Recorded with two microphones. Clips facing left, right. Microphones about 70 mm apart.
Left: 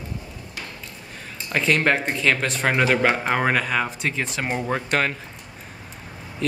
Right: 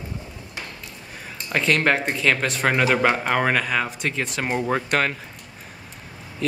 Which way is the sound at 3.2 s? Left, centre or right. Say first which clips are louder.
Even; centre.